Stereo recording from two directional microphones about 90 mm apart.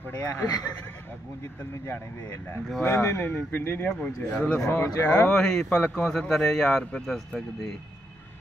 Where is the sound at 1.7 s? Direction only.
25° left (ahead or behind).